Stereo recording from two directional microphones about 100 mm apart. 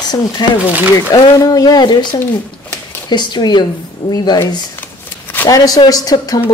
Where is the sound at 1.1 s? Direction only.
35° left (ahead or behind).